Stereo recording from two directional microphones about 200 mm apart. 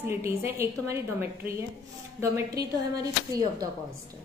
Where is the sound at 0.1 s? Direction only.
10° right (ahead or behind).